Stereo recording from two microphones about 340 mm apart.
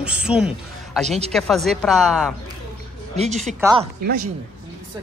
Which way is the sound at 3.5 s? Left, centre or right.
Centre.